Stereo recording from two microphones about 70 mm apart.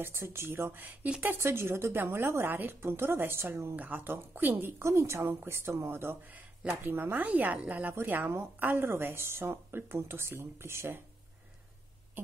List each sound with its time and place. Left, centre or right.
0.0 s a woman's voice: right
4.8 s a woman's voice: right